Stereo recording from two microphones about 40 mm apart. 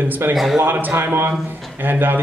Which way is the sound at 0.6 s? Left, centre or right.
Right.